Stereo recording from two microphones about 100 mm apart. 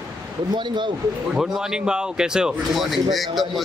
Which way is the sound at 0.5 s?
50° right (ahead or behind).